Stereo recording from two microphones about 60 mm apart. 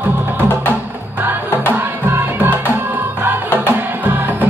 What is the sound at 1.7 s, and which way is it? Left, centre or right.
Music, right.